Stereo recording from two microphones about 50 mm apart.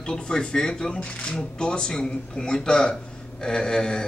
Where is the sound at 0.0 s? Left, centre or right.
Centre.